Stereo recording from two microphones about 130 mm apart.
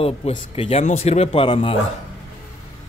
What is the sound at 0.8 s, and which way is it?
Speech, 60° left (ahead or behind).